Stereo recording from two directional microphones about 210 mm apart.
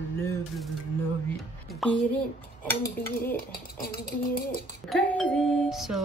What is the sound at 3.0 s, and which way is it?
Music, 10° left (ahead or behind).